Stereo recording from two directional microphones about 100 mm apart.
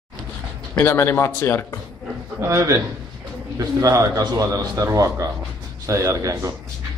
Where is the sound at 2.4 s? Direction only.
30° right (ahead or behind).